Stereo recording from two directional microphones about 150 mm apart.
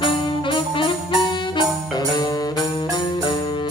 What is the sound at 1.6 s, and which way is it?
Music, 30° left (ahead or behind).